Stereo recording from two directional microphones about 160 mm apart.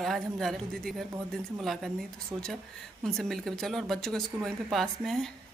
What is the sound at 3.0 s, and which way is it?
Speech, 5° left (ahead or behind).